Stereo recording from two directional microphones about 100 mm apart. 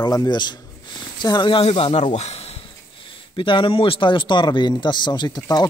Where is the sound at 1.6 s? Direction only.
75° left (ahead or behind).